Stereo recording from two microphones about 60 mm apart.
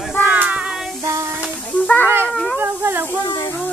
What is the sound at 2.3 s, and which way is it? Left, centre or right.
Speech, centre.